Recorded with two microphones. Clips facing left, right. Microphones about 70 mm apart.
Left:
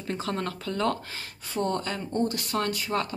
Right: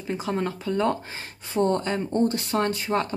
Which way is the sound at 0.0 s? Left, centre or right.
Centre.